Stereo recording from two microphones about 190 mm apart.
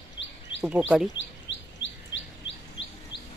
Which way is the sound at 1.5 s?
70° left (ahead or behind).